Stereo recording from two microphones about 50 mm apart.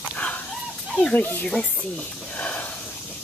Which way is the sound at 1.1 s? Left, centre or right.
Left.